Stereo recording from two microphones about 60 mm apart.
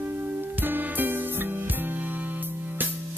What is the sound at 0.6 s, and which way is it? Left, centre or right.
Music, right.